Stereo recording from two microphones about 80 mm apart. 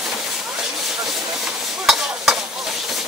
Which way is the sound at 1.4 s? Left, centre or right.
Centre.